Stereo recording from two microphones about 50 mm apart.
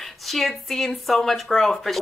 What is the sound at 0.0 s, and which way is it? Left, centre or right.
A woman's voice, centre.